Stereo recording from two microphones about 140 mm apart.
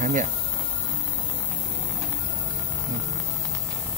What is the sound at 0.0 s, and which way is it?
Speech, 60° right (ahead or behind).